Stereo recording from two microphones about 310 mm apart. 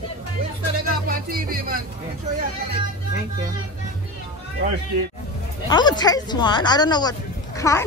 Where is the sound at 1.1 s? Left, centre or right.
Right.